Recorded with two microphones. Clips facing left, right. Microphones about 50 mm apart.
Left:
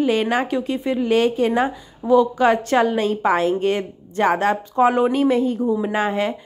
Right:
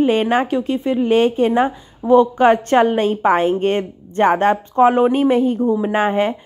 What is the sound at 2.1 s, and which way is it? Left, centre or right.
A woman's voice, right.